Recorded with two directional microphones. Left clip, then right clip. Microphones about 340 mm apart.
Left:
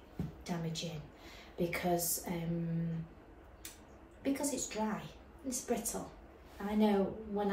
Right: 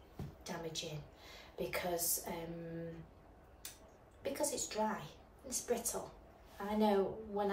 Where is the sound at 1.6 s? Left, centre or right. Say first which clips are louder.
Left 4 dB; centre.